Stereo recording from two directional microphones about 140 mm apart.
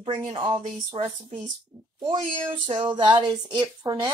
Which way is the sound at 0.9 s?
50° right (ahead or behind).